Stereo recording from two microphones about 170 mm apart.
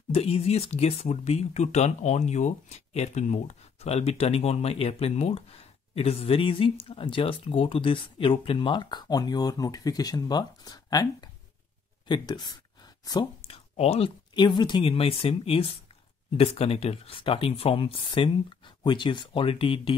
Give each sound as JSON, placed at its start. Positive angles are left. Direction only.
{"t": 0.1, "sound": "speech", "side_deg": 35}